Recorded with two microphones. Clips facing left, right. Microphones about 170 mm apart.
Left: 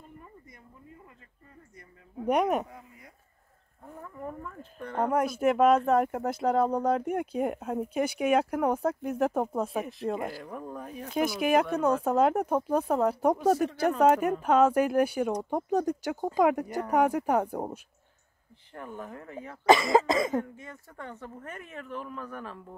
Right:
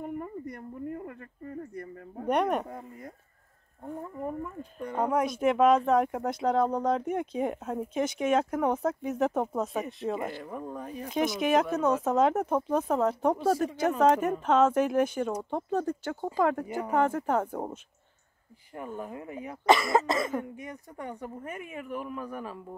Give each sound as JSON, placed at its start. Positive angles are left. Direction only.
{"t": 0.0, "sound": "a sound", "side_deg": -65}
{"t": 2.2, "sound": "speech", "side_deg": 5}
{"t": 3.8, "sound": "speech", "side_deg": -30}
{"t": 4.3, "sound": "speech", "side_deg": -15}
{"t": 5.1, "sound": "speech", "side_deg": 5}
{"t": 18.8, "sound": "speech", "side_deg": -10}
{"t": 19.8, "sound": "cough", "side_deg": 25}
{"t": 20.5, "sound": "speech", "side_deg": -15}